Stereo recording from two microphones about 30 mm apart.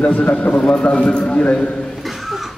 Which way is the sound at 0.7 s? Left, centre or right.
Left.